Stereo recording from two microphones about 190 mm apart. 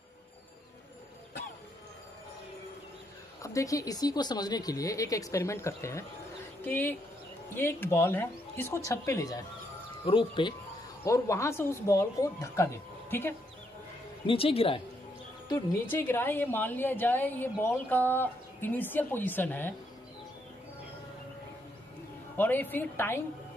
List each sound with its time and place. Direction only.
3.4 s a woman's voice: 15° left (ahead or behind)
11.1 s a woman's voice: 15° left (ahead or behind)
14.2 s speech: 30° left (ahead or behind)
15.4 s a woman's voice: 15° left (ahead or behind)
22.4 s a woman's voice: 10° left (ahead or behind)